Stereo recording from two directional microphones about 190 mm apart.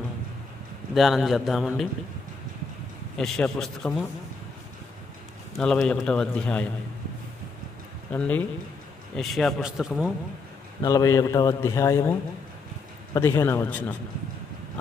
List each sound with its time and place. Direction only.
0.9 s a man's voice: centre (ahead or behind)
3.2 s a man's voice: 5° left (ahead or behind)
5.6 s a man's voice: 5° left (ahead or behind)
8.1 s a man's voice: 10° left (ahead or behind)
10.8 s a man's voice: 20° left (ahead or behind)
13.1 s a man's voice: 15° left (ahead or behind)